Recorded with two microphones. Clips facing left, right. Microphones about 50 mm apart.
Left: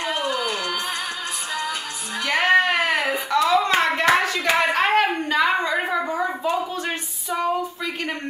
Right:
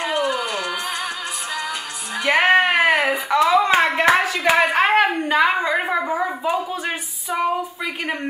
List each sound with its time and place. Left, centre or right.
0.0 s music: centre
2.2 s hands: right
4.7 s a woman's voice: centre